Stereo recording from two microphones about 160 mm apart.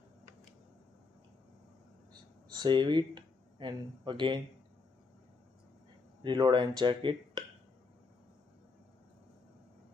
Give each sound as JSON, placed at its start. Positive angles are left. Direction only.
{"t": 2.5, "sound": "speech", "side_deg": -30}
{"t": 6.2, "sound": "speech", "side_deg": -30}